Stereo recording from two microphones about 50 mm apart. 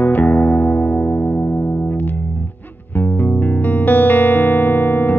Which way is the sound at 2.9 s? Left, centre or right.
Left.